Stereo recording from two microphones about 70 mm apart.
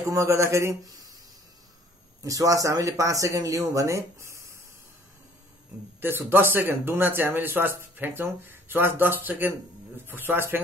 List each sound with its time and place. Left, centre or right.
0.0 s speech: right
2.2 s speech: right
5.9 s speech: right